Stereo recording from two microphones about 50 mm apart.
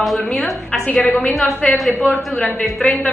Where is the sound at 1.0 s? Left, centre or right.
Left.